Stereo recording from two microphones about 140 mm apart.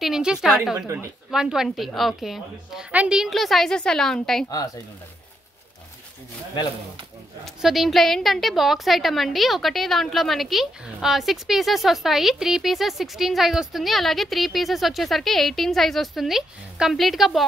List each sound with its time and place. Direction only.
0.0 s a woman's voice: 5° right (ahead or behind)
0.7 s a woman's voice: 20° right (ahead or behind)
1.3 s a woman's voice: 5° right (ahead or behind)
7.4 s a woman's voice: centre (ahead or behind)